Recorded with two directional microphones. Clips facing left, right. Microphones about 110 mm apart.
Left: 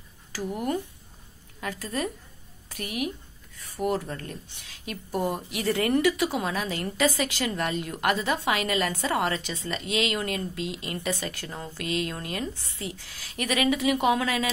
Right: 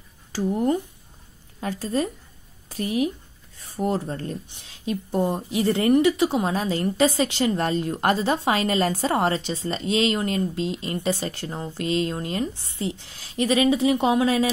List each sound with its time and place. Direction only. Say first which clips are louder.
0.3 s a woman's voice: right 6 dB; 30° right (ahead or behind)